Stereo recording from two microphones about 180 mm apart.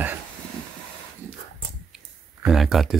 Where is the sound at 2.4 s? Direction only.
Centre (ahead or behind).